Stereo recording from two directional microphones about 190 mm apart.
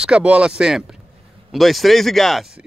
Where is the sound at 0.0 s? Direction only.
5° right (ahead or behind).